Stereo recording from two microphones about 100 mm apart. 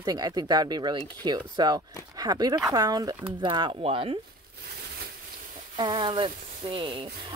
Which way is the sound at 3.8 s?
65° right (ahead or behind).